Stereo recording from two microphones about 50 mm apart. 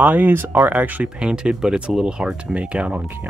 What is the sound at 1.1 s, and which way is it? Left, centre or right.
Speech, centre.